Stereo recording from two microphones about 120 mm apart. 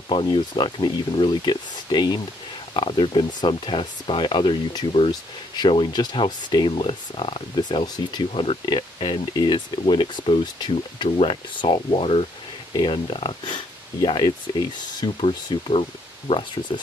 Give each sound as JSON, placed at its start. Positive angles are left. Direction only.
{"t": 0.1, "sound": "speech", "side_deg": 40}
{"t": 7.5, "sound": "speech", "side_deg": 35}
{"t": 8.3, "sound": "speech", "side_deg": 50}
{"t": 11.1, "sound": "speech", "side_deg": 50}
{"t": 15.1, "sound": "speech", "side_deg": 50}